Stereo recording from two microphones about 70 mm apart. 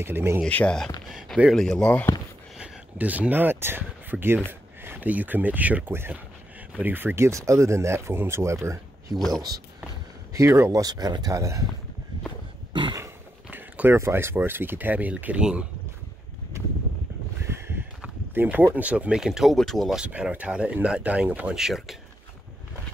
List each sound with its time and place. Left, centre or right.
0.0 s speech: right
0.5 s speech: left
1.5 s speech: centre
3.0 s speech: right
7.2 s speech: right
9.1 s speech: centre
10.3 s speech: right
13.5 s a sound: right
13.9 s speech: right
17.5 s a sound: right
18.3 s speech: right
18.8 s speech: centre
20.1 s speech: centre
21.5 s speech: centre